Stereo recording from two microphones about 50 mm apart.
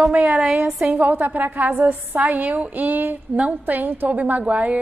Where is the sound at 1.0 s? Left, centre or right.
Right.